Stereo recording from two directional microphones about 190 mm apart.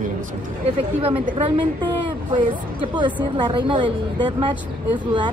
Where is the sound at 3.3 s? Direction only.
25° right (ahead or behind).